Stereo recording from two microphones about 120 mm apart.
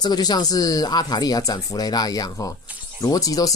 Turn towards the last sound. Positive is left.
turn(degrees=30)  # may be behind; listen again after turning